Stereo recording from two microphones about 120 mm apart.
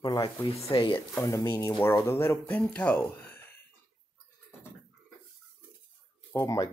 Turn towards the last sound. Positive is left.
turn(degrees=30)  # may be behind; listen again after turning